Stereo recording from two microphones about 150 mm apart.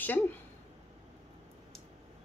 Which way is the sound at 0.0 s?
10° left (ahead or behind).